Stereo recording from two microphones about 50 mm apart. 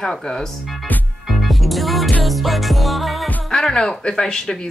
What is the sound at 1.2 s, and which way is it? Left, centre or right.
Music, centre.